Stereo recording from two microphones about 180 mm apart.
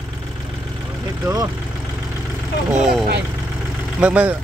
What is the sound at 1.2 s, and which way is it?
Speech, 20° right (ahead or behind).